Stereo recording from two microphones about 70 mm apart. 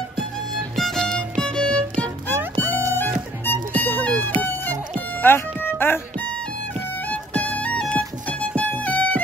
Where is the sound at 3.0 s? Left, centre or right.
Left.